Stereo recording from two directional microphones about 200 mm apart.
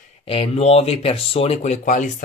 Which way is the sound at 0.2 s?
30° left (ahead or behind).